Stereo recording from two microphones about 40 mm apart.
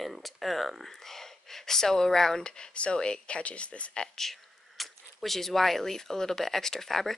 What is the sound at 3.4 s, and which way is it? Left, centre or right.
Speech, left.